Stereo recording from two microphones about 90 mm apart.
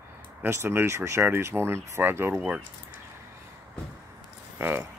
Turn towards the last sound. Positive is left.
turn(degrees=-25)  # may be behind; listen again after turning